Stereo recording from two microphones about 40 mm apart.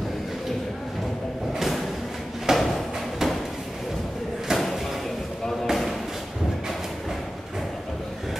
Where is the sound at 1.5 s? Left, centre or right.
Centre.